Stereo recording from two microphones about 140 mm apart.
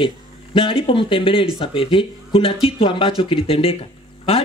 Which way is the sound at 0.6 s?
40° left (ahead or behind).